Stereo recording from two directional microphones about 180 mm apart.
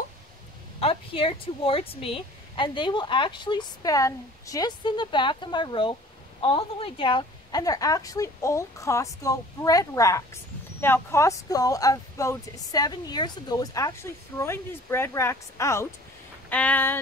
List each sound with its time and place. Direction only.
0.7 s speech: 30° left (ahead or behind); by 17.0 s 10° left (ahead or behind)